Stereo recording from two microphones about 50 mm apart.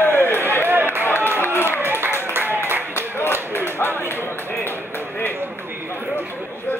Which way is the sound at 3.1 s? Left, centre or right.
Left.